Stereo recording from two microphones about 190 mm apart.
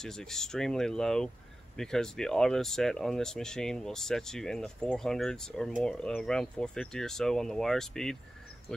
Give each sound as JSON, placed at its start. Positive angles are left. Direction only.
{"t": 0.0, "sound": "speech", "side_deg": 5}